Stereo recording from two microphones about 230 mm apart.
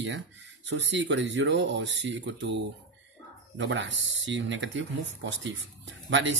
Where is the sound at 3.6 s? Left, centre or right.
Right.